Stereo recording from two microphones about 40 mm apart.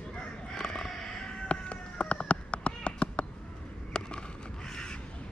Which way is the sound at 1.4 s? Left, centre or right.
Left.